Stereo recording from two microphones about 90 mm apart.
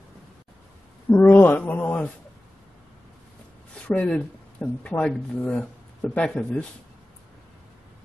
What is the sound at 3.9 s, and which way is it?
Speech, 15° left (ahead or behind).